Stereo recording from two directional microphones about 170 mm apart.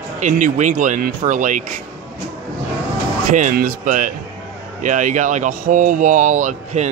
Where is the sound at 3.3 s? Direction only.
50° right (ahead or behind).